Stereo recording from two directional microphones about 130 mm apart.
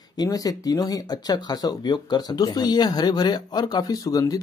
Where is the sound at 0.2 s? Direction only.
30° left (ahead or behind).